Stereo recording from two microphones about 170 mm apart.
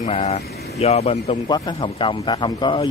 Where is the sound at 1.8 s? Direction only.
30° left (ahead or behind).